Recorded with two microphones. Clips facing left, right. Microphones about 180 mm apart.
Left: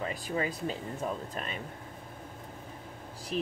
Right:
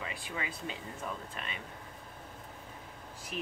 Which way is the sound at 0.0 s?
40° left (ahead or behind).